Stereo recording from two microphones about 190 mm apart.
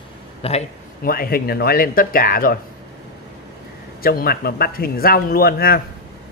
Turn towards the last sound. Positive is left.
turn(degrees=55)  # may be behind; listen again after turning